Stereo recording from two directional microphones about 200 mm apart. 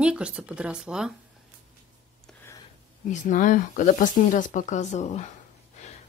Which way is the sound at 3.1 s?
40° left (ahead or behind).